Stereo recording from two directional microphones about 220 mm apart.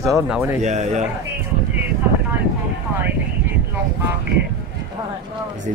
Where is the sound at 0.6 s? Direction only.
30° right (ahead or behind).